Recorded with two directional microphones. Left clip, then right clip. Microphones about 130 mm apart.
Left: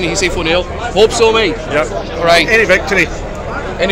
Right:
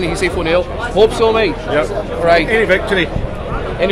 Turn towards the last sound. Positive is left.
turn(degrees=-15)  # may be behind; listen again after turning